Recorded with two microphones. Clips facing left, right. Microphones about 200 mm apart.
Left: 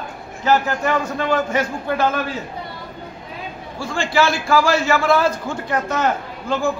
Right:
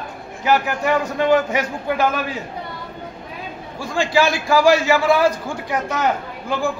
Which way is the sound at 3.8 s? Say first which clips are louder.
Right 1 dB; 15° right (ahead or behind).